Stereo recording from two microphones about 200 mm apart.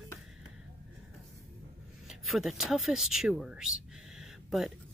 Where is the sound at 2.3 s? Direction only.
Centre (ahead or behind).